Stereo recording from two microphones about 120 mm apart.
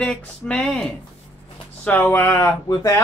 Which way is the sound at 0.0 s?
5° left (ahead or behind).